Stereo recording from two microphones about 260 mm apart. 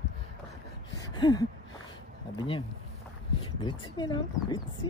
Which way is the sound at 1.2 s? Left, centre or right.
Centre.